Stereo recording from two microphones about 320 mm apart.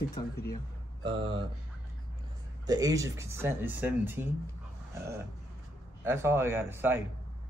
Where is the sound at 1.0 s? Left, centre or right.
Centre.